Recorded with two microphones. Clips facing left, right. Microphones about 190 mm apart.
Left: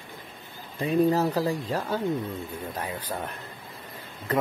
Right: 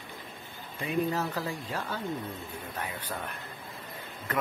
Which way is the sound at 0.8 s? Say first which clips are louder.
Left 7 dB; 40° left (ahead or behind).